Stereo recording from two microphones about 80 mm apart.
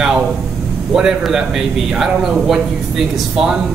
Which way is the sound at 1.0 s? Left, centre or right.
Centre.